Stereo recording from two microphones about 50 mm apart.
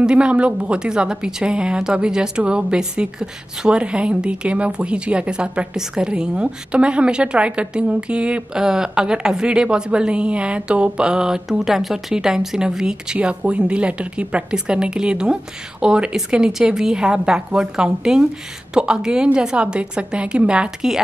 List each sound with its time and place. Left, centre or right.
0.0 s a woman's voice: right